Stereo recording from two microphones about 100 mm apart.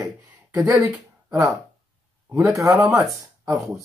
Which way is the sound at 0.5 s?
35° right (ahead or behind).